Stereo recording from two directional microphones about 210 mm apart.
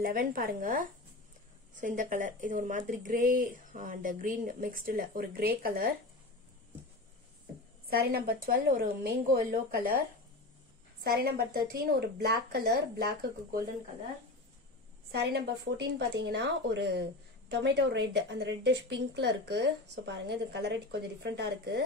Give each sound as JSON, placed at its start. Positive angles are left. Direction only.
{"t": 0.0, "sound": "a woman's voice", "side_deg": -45}
{"t": 7.9, "sound": "a woman's voice", "side_deg": -45}
{"t": 11.1, "sound": "a woman's voice", "side_deg": -45}
{"t": 15.0, "sound": "a woman's voice", "side_deg": -50}